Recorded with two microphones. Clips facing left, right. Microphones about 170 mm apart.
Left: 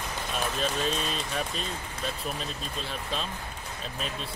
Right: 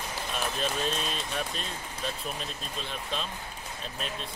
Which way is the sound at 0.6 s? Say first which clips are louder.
Left 2 dB; centre (ahead or behind).